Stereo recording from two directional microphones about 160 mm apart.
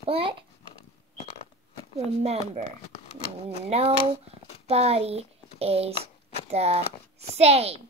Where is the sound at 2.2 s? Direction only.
40° right (ahead or behind).